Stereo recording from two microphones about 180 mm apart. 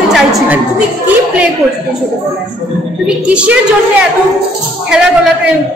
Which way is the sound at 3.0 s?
5° right (ahead or behind).